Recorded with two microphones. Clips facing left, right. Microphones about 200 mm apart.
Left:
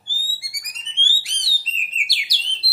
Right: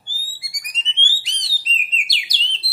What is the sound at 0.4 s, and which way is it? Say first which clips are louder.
Bird: right 6 dB; 20° right (ahead or behind).